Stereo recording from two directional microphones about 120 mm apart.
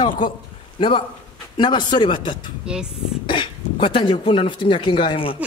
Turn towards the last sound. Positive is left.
turn(degrees=45)  # may be behind; listen again after turning